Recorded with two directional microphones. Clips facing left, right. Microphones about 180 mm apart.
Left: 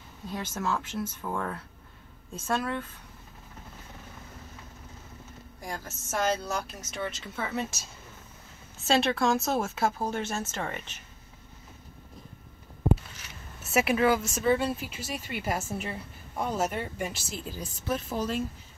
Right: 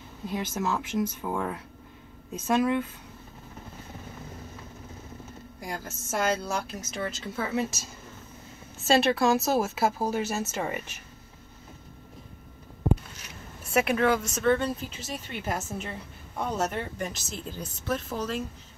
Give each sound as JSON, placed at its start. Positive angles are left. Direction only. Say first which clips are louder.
{"t": 0.3, "sound": "speech", "louder": "right 2 dB", "side_deg": -10}
{"t": 6.0, "sound": "speech", "louder": "right 1 dB", "side_deg": 0}
{"t": 8.8, "sound": "speech", "louder": "right 3 dB", "side_deg": 0}
{"t": 13.6, "sound": "a woman's voice", "louder": "even", "side_deg": 5}